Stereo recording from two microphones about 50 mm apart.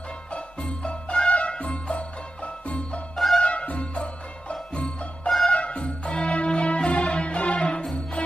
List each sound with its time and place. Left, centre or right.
0.3 s music: centre
3.2 s music: centre
3.4 s music: left